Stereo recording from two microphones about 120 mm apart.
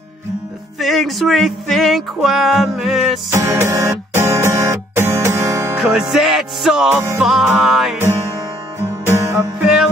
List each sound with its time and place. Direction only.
0.7 s music: centre (ahead or behind)
3.3 s music: 25° right (ahead or behind)
5.8 s music: 5° right (ahead or behind)
6.9 s music: 15° right (ahead or behind)
7.2 s music: 5° right (ahead or behind)
9.1 s music: 25° right (ahead or behind)